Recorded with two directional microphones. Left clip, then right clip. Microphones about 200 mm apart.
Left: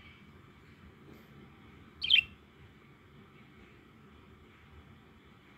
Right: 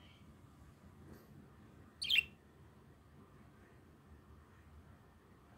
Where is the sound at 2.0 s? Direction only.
30° right (ahead or behind).